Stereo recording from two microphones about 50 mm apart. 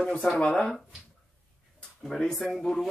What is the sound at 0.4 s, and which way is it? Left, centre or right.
Speech, left.